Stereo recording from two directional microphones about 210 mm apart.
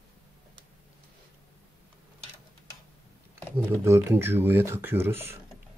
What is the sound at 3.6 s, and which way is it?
Speech, 10° right (ahead or behind).